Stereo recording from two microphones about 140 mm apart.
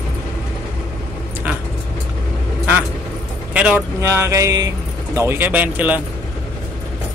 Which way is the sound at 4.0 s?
20° right (ahead or behind).